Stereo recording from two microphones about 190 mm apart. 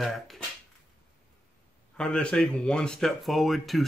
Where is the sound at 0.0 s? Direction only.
Centre (ahead or behind).